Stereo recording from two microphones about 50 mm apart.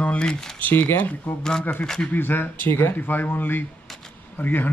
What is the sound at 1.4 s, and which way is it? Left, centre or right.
Speech, centre.